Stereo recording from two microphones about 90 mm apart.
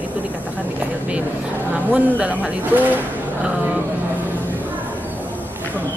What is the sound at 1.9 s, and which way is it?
Speech, 15° right (ahead or behind).